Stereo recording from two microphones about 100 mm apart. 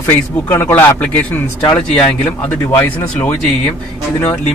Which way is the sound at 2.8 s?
20° left (ahead or behind).